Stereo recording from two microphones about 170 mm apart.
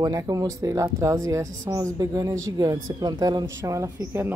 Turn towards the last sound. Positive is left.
turn(degrees=-15)  # may be behind; listen again after turning